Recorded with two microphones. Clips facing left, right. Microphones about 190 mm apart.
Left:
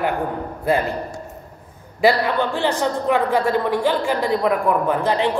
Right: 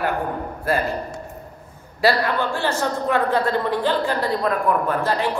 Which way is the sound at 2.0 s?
15° left (ahead or behind).